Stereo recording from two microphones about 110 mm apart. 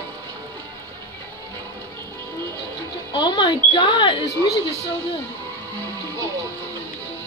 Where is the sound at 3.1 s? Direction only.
45° left (ahead or behind).